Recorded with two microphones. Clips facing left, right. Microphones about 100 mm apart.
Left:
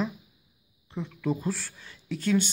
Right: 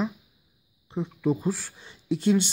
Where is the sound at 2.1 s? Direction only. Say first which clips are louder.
Right 4 dB; 25° right (ahead or behind).